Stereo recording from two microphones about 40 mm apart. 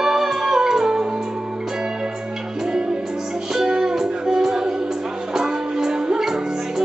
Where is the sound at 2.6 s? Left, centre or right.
Right.